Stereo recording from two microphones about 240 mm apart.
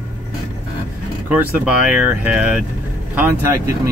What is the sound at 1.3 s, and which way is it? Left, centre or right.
Speech, centre.